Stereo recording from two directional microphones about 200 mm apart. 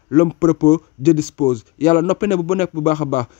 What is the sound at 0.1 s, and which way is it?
Speech, 40° left (ahead or behind).